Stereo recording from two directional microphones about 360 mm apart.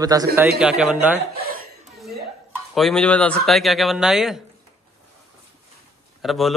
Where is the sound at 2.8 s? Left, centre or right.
Centre.